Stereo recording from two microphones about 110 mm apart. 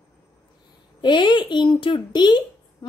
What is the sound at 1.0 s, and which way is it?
A woman's voice, 45° left (ahead or behind).